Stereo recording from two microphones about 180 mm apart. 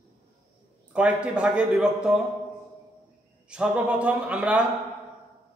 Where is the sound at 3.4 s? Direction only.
5° right (ahead or behind).